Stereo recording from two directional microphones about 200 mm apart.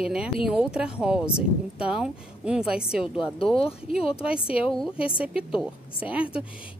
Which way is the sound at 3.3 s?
25° left (ahead or behind).